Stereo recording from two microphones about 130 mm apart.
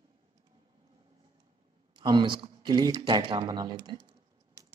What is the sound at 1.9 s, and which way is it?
Speech, 35° right (ahead or behind).